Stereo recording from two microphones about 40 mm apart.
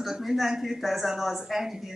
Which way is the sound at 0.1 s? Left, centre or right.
Centre.